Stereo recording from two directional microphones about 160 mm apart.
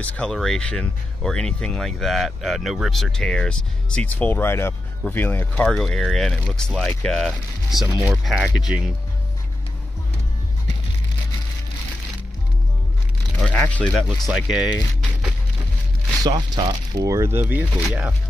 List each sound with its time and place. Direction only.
0.0 s speech: 5° left (ahead or behind)
13.7 s speech: 10° left (ahead or behind)
16.3 s speech: 25° right (ahead or behind); by 18.1 s 5° right (ahead or behind)